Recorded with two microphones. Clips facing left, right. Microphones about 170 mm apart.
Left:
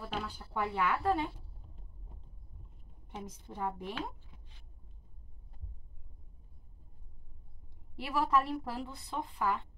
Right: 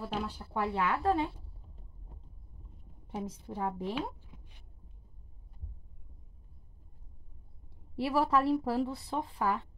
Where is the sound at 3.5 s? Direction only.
20° right (ahead or behind).